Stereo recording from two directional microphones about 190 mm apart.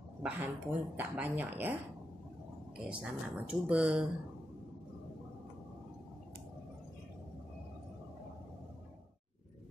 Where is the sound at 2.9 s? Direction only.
5° right (ahead or behind).